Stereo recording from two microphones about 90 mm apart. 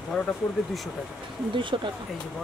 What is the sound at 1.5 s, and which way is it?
Speech, 65° right (ahead or behind).